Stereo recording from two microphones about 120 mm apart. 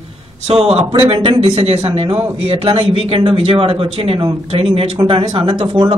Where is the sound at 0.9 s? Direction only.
40° right (ahead or behind).